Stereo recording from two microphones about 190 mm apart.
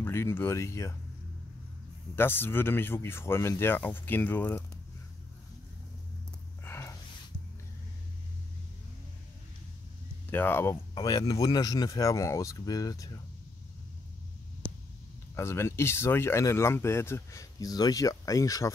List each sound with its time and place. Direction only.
0.0 s speech: 10° left (ahead or behind)
2.1 s speech: 10° left (ahead or behind)
6.6 s a sound: 15° left (ahead or behind)
10.3 s speech: 10° left (ahead or behind)
15.3 s speech: 15° left (ahead or behind)